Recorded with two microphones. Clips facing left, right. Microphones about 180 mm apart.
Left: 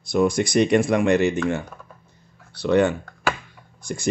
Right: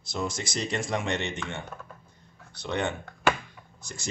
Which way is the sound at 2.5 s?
65° left (ahead or behind).